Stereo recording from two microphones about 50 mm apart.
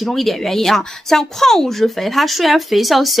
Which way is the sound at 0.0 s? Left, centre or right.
Centre.